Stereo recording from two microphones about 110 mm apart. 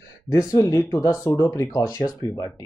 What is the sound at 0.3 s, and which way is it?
Speech, 35° left (ahead or behind).